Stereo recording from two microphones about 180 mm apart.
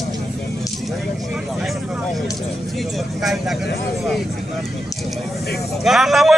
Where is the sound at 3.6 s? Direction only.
60° left (ahead or behind).